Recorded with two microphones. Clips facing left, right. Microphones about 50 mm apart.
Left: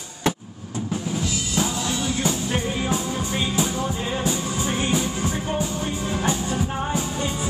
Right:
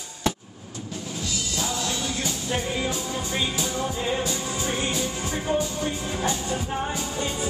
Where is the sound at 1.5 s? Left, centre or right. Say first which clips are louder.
Left 4 dB; centre.